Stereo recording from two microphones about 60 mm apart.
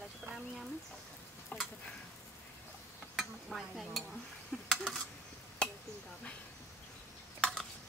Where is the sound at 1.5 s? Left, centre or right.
Left.